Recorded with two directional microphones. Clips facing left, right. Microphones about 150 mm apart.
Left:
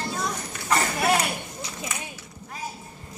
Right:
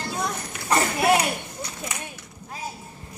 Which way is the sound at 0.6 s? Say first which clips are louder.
Right 3 dB; 20° right (ahead or behind).